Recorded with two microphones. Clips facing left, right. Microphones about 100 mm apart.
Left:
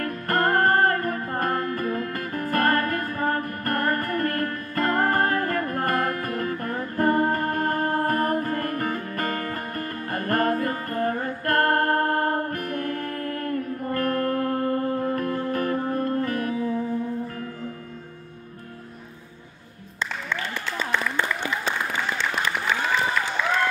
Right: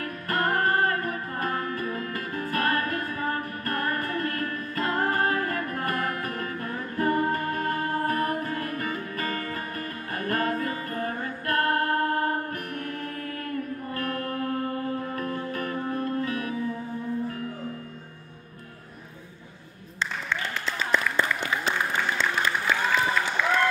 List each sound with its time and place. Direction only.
0.0 s music: 45° left (ahead or behind)